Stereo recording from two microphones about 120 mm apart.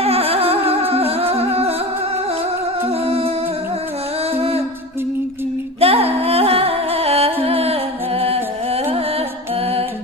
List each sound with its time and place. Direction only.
0.0 s music: 55° right (ahead or behind)
2.8 s music: 55° right (ahead or behind)
4.3 s music: 55° right (ahead or behind)
5.8 s music: 55° right (ahead or behind)